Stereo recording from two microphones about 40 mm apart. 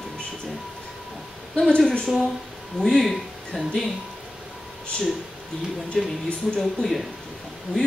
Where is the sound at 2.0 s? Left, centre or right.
Centre.